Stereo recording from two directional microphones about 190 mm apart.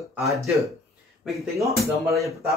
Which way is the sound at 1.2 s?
Centre (ahead or behind).